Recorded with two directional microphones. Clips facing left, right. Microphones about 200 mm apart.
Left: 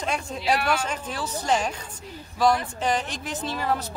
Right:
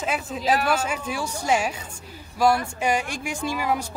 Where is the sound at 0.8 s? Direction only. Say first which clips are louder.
Right 2 dB; 10° right (ahead or behind).